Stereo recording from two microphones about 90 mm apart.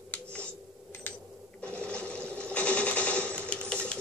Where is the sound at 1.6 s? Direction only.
15° left (ahead or behind).